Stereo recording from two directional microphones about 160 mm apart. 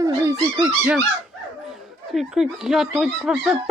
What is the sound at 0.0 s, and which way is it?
Dog, 20° right (ahead or behind).